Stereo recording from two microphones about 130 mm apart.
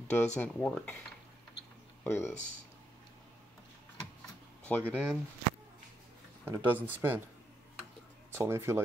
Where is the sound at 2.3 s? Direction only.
70° left (ahead or behind).